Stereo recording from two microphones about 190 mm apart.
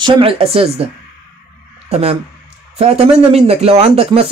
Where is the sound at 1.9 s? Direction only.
35° right (ahead or behind).